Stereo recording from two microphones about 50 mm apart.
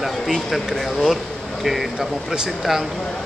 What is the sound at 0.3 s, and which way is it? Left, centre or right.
Speech, centre.